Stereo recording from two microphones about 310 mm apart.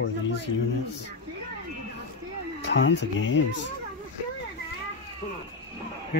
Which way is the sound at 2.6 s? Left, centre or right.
Left.